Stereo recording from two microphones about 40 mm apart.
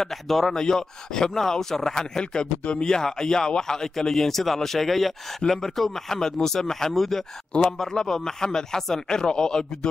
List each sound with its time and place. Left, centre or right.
0.0 s a man's voice: centre
0.6 s speech: centre